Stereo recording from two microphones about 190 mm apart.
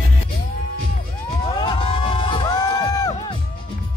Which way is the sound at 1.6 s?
30° left (ahead or behind).